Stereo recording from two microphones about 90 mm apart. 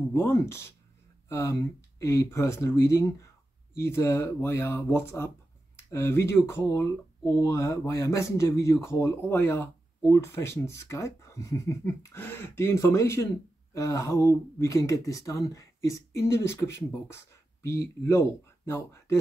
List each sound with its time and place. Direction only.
0.1 s speech: 30° left (ahead or behind)
9.3 s speech: 25° left (ahead or behind)